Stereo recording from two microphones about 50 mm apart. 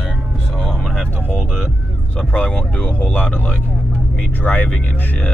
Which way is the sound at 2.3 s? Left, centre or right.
Left.